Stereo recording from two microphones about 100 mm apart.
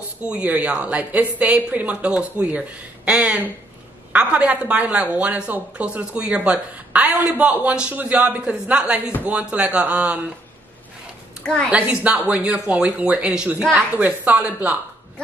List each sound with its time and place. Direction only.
0.2 s a woman's voice: 15° right (ahead or behind)
11.4 s a woman's voice: 10° left (ahead or behind)
11.7 s a woman's voice: 10° right (ahead or behind)